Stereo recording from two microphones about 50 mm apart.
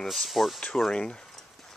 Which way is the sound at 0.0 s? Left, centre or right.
Centre.